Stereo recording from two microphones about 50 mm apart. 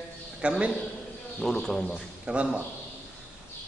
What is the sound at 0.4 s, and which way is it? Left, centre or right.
Speech, right.